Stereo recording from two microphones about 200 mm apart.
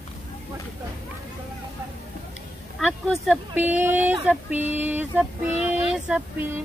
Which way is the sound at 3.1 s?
5° right (ahead or behind).